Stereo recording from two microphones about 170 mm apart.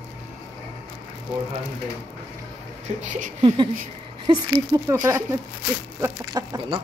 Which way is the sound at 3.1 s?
50° right (ahead or behind).